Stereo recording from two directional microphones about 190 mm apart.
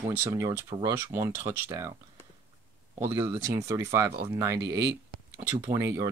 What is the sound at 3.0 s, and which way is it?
Speech, 15° right (ahead or behind).